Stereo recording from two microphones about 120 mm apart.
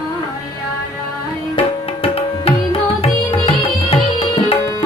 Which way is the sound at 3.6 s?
50° left (ahead or behind).